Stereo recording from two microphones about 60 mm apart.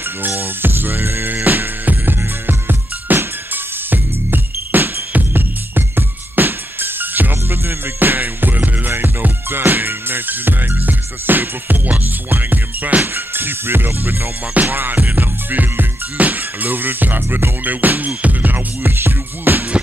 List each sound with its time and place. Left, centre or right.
0.2 s music: right